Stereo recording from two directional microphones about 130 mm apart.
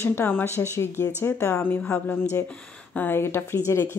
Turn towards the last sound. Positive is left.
turn(degrees=20)  # may be behind; listen again after turning